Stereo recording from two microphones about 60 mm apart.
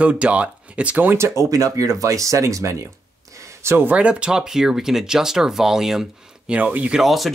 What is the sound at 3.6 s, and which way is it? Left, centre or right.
Speech, right.